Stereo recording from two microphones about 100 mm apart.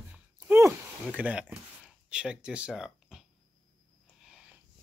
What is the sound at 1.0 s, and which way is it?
Speech, 15° right (ahead or behind).